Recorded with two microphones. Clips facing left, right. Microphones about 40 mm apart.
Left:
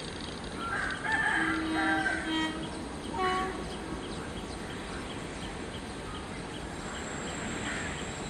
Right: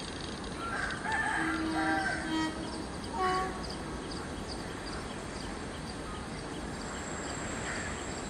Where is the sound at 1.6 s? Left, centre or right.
Left.